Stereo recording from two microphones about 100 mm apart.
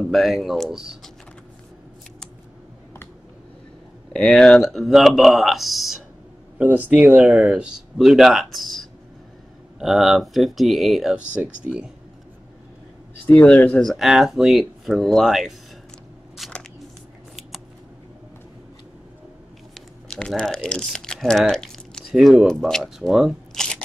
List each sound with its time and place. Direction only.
0.1 s speech: centre (ahead or behind)
4.1 s speech: 5° left (ahead or behind)
6.6 s speech: 15° right (ahead or behind)
13.3 s speech: 15° left (ahead or behind)
13.7 s speech: centre (ahead or behind)
16.4 s scissors: centre (ahead or behind)
19.7 s speech: 5° left (ahead or behind)